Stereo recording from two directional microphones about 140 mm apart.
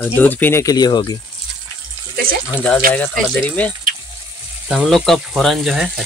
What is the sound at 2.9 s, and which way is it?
Speech, 10° left (ahead or behind).